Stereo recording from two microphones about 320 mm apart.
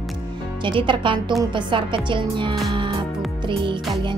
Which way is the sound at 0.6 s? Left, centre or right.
Centre.